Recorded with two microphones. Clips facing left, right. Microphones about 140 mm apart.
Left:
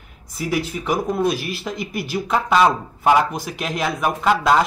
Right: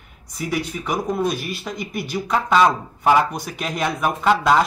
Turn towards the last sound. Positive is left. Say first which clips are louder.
# even
turn(degrees=5)  # may be behind; listen again after turning